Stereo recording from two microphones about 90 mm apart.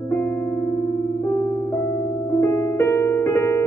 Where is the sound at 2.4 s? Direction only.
30° left (ahead or behind).